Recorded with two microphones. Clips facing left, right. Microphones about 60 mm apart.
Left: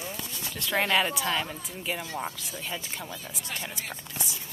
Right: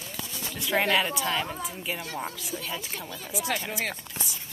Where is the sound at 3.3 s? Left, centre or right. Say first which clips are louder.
Right 13 dB; right.